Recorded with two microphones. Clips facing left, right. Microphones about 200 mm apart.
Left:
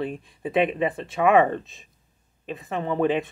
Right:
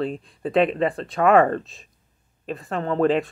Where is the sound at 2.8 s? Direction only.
15° left (ahead or behind).